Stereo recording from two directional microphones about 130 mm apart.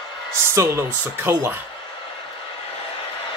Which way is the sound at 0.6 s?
25° right (ahead or behind).